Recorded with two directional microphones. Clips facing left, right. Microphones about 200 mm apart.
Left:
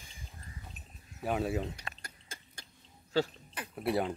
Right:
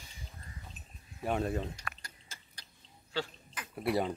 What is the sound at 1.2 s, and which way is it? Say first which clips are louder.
Speech: left 1 dB; 5° left (ahead or behind).